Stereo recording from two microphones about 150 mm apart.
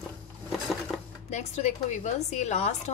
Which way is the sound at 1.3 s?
50° left (ahead or behind).